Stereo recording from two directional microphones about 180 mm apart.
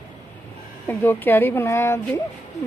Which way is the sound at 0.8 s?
10° left (ahead or behind).